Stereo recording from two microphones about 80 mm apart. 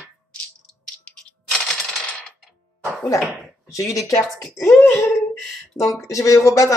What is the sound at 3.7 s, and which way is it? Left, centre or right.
Speech, left.